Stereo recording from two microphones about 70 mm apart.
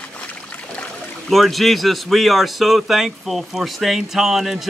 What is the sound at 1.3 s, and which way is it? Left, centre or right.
Speech, centre.